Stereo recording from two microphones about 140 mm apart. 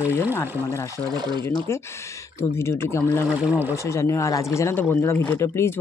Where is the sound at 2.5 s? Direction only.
20° left (ahead or behind).